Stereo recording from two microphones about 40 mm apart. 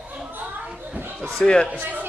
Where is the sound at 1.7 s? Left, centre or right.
Right.